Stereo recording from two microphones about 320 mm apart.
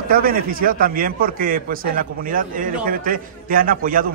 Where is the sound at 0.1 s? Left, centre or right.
Right.